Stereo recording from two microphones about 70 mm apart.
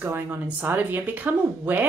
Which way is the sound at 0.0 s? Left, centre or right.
Right.